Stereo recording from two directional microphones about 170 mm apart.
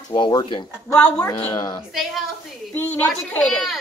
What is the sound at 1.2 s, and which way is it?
Speech, 25° left (ahead or behind).